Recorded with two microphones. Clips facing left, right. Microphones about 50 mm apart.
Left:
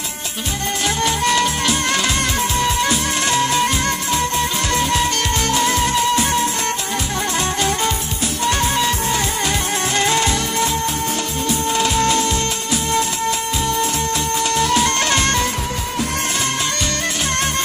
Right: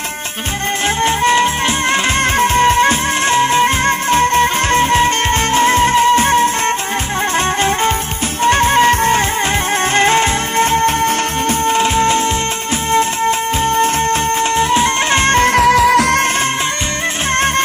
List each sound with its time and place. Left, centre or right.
1.0 s music: right
2.4 s music: right
11.6 s music: right
15.4 s music: right